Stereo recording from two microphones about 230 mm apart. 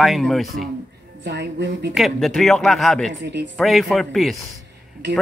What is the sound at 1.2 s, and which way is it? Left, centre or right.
Speech, right.